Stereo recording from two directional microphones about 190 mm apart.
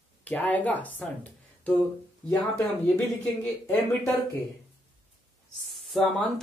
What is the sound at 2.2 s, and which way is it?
Speech, 5° left (ahead or behind).